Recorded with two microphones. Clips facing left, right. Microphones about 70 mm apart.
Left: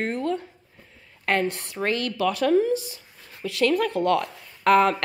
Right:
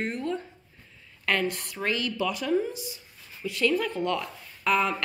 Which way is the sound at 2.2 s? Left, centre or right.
Left.